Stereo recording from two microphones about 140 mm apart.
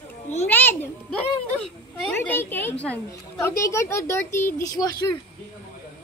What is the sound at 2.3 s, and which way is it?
A woman's voice, 15° left (ahead or behind).